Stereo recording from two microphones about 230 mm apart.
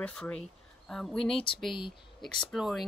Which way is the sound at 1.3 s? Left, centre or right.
Left.